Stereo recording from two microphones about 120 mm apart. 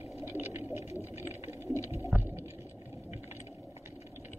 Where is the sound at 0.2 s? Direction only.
20° right (ahead or behind).